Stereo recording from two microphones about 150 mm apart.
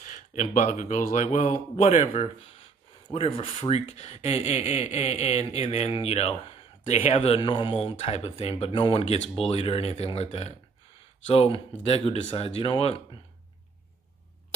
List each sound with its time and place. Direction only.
0.0 s speech: 55° left (ahead or behind)
3.1 s speech: 35° left (ahead or behind)